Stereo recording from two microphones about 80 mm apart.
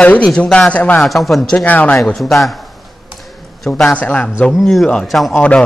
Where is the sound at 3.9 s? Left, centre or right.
Centre.